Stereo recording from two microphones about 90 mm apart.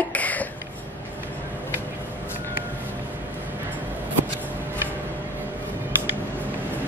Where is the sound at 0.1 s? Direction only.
15° left (ahead or behind).